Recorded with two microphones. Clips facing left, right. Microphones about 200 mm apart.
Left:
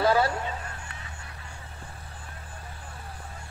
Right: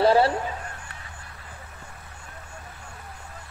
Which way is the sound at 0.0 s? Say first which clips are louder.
Right 4 dB; 30° right (ahead or behind).